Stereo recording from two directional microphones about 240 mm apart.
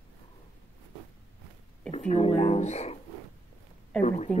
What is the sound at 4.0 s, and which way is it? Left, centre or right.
Speech, left.